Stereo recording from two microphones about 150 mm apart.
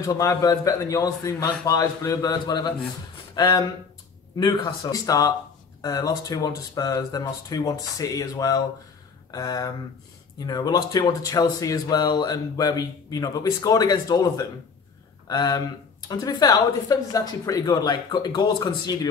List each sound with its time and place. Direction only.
0.0 s speech: 25° left (ahead or behind)